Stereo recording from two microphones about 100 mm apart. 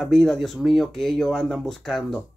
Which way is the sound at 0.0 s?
5° left (ahead or behind).